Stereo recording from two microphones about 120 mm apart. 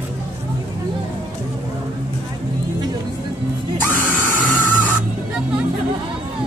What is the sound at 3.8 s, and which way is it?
Screaming, 15° left (ahead or behind).